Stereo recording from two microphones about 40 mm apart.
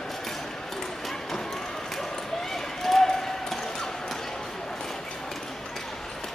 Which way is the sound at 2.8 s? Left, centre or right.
Centre.